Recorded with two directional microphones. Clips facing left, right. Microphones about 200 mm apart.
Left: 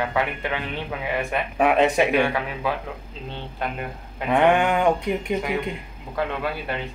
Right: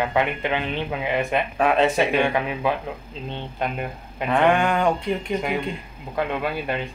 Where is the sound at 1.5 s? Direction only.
15° left (ahead or behind).